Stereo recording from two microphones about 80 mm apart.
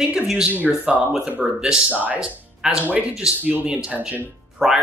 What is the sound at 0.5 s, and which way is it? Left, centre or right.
Speech, right.